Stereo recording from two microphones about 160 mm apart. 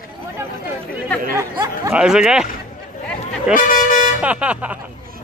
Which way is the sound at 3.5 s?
55° left (ahead or behind).